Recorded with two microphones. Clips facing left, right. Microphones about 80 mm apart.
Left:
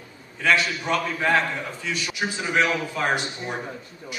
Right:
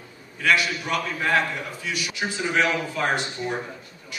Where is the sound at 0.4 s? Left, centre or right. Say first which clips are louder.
Even; left.